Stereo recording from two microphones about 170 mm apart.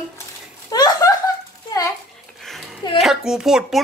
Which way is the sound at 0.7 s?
20° left (ahead or behind).